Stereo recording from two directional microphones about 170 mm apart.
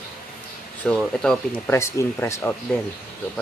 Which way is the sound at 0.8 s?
5° left (ahead or behind).